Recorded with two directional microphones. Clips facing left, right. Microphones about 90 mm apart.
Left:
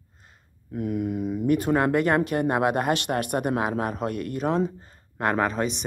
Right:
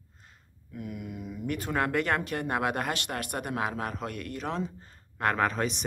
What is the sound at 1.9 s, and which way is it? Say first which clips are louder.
Speech: left 7 dB; 15° left (ahead or behind).